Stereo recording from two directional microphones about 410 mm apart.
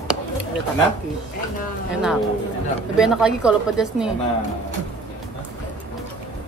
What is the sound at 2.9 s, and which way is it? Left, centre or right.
Speech, centre.